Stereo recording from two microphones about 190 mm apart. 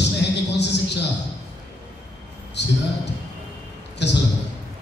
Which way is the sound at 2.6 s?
65° left (ahead or behind).